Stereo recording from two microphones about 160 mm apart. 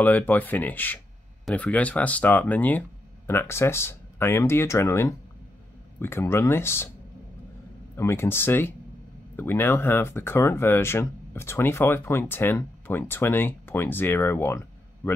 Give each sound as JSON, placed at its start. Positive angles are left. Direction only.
{"t": 0.0, "sound": "speech", "side_deg": 10}
{"t": 7.9, "sound": "speech", "side_deg": 15}